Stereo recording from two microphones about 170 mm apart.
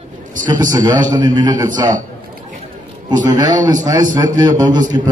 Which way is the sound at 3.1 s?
25° right (ahead or behind).